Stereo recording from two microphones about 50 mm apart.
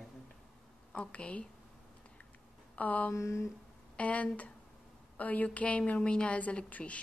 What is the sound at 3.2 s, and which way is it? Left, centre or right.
Speech, left.